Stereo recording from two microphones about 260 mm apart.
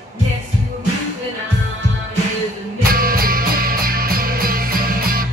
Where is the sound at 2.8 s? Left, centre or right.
Right.